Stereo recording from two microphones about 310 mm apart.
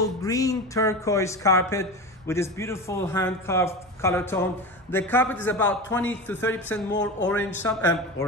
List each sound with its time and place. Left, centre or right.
0.0 s speech: centre
6.9 s speech: left
7.2 s speech: centre